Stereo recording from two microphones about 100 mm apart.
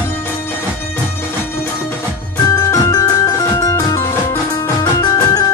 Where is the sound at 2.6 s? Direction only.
35° left (ahead or behind).